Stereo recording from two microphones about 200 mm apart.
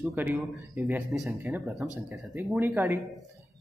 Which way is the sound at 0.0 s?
10° right (ahead or behind).